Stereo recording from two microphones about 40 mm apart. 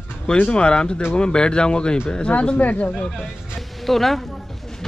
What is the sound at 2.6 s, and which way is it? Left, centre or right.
Speech, left.